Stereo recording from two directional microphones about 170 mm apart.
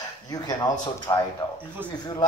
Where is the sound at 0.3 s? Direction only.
25° left (ahead or behind).